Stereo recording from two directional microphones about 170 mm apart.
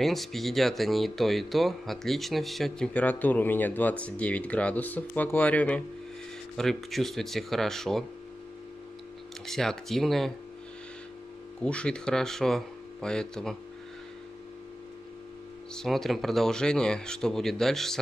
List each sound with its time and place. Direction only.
0.0 s speech: centre (ahead or behind)
9.5 s speech: 5° left (ahead or behind)
11.6 s speech: 5° left (ahead or behind)
15.7 s speech: 5° left (ahead or behind)